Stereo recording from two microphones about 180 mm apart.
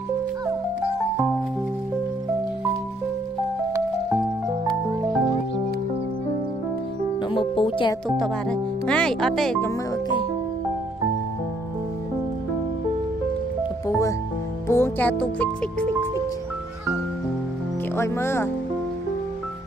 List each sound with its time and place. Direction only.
7.2 s music: 30° left (ahead or behind)
8.2 s speech: 5° left (ahead or behind)
13.8 s music: 15° left (ahead or behind)
14.7 s speech: 10° left (ahead or behind)
17.9 s speech: 15° left (ahead or behind)